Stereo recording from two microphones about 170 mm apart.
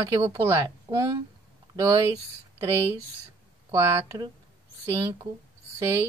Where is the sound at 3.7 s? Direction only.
20° right (ahead or behind).